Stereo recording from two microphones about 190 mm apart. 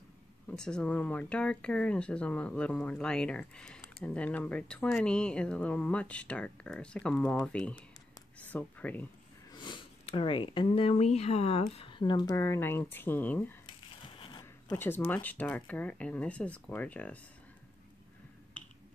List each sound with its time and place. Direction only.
0.5 s speech: 5° left (ahead or behind)
9.5 s speech: 25° left (ahead or behind)
13.7 s crumpling: 25° left (ahead or behind)
14.4 s zipper: 15° left (ahead or behind)
15.0 s speech: 10° left (ahead or behind)